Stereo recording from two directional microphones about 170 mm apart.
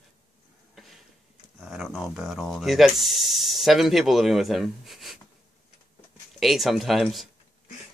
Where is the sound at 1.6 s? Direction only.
Centre (ahead or behind).